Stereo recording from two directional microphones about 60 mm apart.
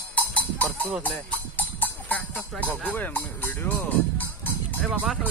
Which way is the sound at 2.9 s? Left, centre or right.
Left.